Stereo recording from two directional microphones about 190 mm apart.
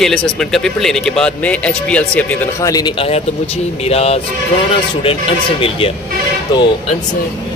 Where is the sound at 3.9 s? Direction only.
30° left (ahead or behind).